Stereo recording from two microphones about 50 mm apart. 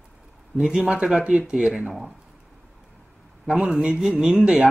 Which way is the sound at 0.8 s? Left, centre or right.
Right.